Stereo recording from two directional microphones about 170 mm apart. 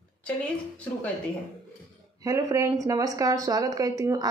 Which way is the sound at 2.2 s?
15° right (ahead or behind).